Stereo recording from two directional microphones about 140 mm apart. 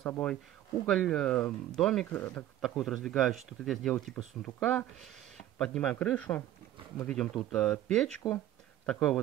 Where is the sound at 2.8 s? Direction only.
Centre (ahead or behind).